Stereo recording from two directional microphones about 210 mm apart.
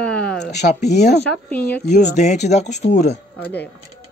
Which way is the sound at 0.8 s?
50° left (ahead or behind).